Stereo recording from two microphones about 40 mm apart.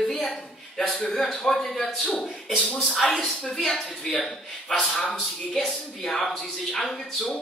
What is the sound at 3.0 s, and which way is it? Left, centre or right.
Speech, centre.